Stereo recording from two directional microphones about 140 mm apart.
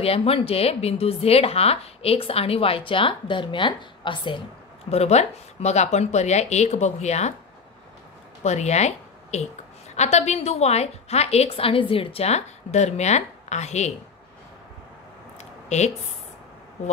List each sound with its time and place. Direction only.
0.0 s speech: 45° left (ahead or behind)
4.9 s speech: 50° left (ahead or behind)
8.5 s speech: 55° left (ahead or behind)
15.3 s a sound: 55° left (ahead or behind)